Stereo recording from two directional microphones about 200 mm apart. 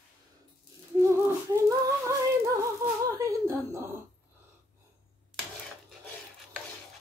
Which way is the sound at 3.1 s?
15° right (ahead or behind).